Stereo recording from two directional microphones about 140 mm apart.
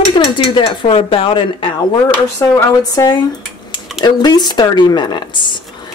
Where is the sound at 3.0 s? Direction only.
20° left (ahead or behind).